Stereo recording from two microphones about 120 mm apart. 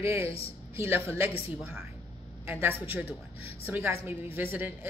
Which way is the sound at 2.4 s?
20° right (ahead or behind).